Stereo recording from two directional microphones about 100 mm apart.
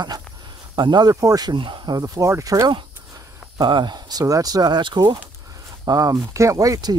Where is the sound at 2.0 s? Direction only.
30° right (ahead or behind).